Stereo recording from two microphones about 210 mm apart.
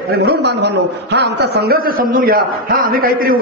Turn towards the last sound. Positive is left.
turn(degrees=-45)  # may be behind; listen again after turning